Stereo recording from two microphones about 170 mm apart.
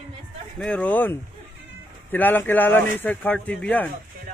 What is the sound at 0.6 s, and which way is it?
A man's voice, 5° left (ahead or behind).